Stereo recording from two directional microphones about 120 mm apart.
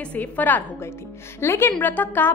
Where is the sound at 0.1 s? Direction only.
15° left (ahead or behind).